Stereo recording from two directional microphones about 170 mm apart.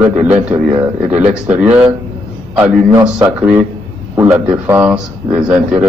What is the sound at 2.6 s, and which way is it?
Speech, 20° right (ahead or behind).